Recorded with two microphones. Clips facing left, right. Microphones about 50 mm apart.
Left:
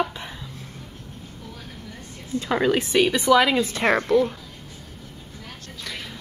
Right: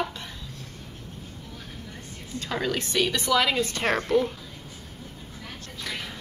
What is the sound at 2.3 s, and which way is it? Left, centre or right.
Speech, left.